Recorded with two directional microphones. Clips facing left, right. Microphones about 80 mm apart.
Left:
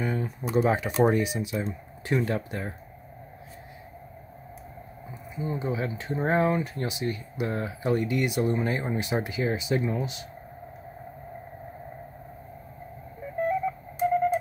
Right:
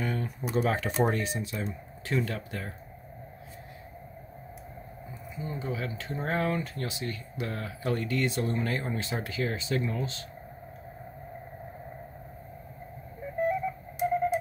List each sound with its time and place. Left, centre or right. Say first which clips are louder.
0.0 s computer keyboard: left 3 dB; centre
0.7 s speech: left 5 dB; centre
5.3 s speech: left 5 dB; left
13.4 s radio: left 2 dB; centre